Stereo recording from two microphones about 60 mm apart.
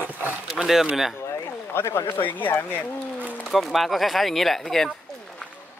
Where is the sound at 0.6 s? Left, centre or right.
Centre.